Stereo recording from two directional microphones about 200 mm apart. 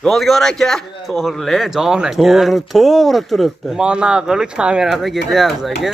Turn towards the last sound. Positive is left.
turn(degrees=0)  # may be behind; listen again after turning